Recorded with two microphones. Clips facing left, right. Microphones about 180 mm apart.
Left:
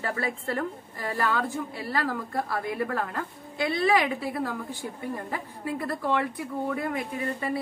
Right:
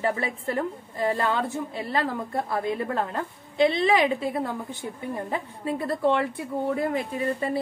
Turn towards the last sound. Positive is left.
turn(degrees=-30)  # may be behind; listen again after turning